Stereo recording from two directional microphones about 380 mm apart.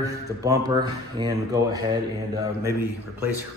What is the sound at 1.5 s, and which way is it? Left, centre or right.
Speech, centre.